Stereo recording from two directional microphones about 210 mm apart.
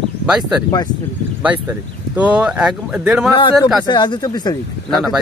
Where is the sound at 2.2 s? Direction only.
5° right (ahead or behind).